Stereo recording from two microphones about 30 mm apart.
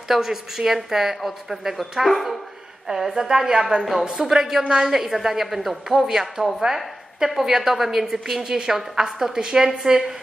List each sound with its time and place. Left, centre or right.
0.1 s a woman's voice: centre
2.0 s a woman's voice: centre
3.3 s a woman's voice: centre